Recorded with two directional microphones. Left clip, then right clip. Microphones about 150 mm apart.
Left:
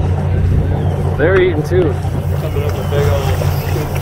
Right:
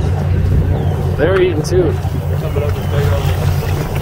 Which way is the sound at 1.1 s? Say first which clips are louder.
Left 1 dB; 15° right (ahead or behind).